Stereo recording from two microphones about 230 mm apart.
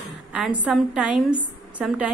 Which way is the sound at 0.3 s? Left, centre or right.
Centre.